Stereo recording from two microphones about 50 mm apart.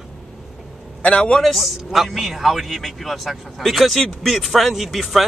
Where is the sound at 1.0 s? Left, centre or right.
Left.